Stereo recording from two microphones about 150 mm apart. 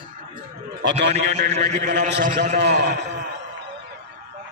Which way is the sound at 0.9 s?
45° right (ahead or behind).